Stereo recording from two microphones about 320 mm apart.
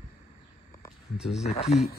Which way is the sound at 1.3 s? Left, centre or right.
Centre.